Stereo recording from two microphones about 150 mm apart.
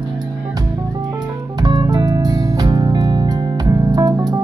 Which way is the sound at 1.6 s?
30° right (ahead or behind).